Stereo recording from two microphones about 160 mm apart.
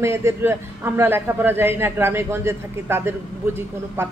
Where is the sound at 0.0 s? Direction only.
15° right (ahead or behind).